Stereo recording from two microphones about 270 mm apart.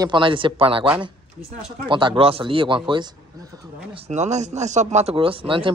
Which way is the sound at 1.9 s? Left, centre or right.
Centre.